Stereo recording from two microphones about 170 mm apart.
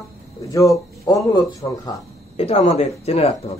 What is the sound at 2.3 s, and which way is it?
Speech, 35° left (ahead or behind).